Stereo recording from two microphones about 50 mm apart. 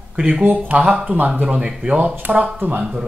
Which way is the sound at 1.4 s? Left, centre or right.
Right.